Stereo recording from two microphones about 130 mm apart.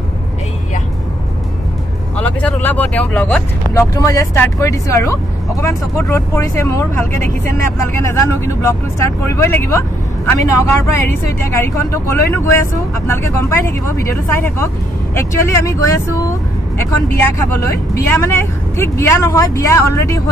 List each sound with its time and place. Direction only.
2.1 s speech: 10° left (ahead or behind)
3.9 s speech: 25° left (ahead or behind)